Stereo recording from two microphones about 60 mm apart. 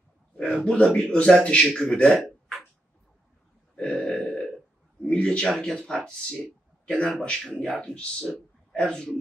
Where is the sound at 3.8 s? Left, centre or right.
Centre.